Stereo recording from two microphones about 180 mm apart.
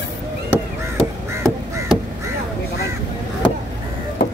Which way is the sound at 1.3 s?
15° right (ahead or behind).